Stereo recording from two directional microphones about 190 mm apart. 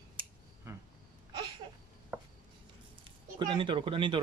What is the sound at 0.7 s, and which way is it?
Insect, 15° right (ahead or behind).